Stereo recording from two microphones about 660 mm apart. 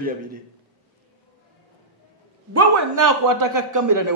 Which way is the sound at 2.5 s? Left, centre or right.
Right.